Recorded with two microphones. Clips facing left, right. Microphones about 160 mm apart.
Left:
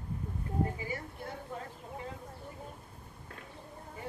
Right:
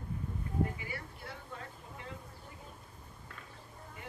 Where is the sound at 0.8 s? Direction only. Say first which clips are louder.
Left 5 dB; 40° left (ahead or behind).